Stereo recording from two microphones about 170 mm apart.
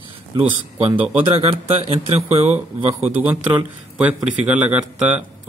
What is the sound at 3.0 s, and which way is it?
A man's voice, 10° right (ahead or behind).